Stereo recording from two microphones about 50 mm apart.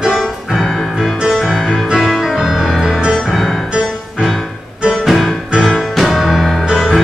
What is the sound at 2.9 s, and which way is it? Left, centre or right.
Music, centre.